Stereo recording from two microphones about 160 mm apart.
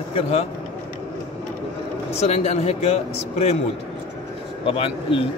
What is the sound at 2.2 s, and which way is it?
A man's voice, 40° left (ahead or behind).